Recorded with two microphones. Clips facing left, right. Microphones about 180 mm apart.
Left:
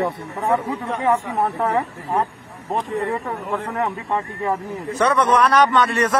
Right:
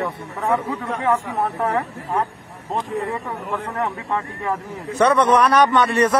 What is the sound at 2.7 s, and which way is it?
Speech, centre (ahead or behind).